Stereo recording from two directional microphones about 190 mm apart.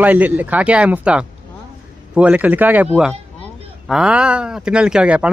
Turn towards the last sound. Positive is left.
turn(degrees=-5)  # may be behind; listen again after turning